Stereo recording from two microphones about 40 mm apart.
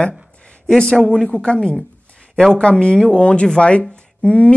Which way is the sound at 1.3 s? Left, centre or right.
Left.